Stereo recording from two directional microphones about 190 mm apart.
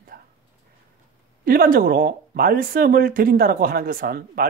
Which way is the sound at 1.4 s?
50° right (ahead or behind).